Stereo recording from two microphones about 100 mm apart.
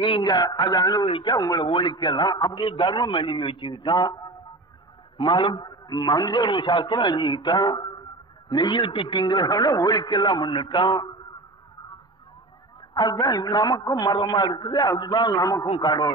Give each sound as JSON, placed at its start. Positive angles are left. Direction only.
{"t": 0.0, "sound": "a man's voice", "side_deg": 50}
{"t": 1.0, "sound": "a man's voice", "side_deg": 55}
{"t": 5.1, "sound": "a man's voice", "side_deg": 55}
{"t": 12.9, "sound": "a man's voice", "side_deg": 45}